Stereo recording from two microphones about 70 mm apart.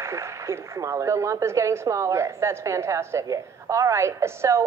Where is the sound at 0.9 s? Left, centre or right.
Right.